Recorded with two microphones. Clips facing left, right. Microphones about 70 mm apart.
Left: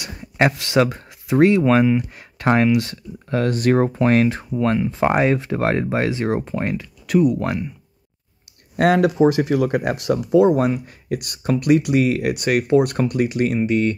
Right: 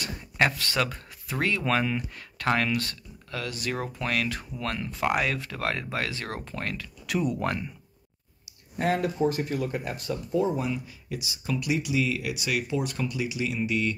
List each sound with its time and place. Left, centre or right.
0.2 s speech: left
3.3 s speech: left
7.1 s speech: centre
8.7 s speech: left